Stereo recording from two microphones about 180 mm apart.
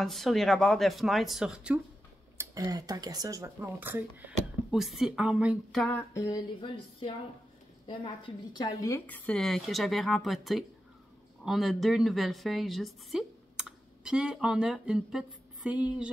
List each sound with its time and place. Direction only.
0.0 s a woman's voice: centre (ahead or behind)
2.3 s speech: 20° right (ahead or behind); by 5.9 s centre (ahead or behind)
5.9 s a sound: 20° left (ahead or behind)
7.8 s a woman's voice: 25° left (ahead or behind); by 16.1 s 5° right (ahead or behind)